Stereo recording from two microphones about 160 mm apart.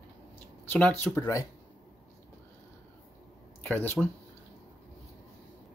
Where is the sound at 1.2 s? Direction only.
20° left (ahead or behind).